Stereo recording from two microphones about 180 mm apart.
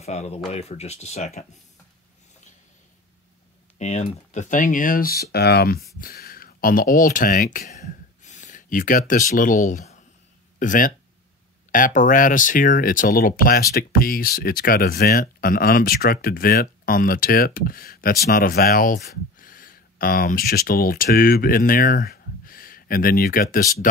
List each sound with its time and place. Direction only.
0.0 s speech: 35° left (ahead or behind)
3.7 s speech: 40° left (ahead or behind)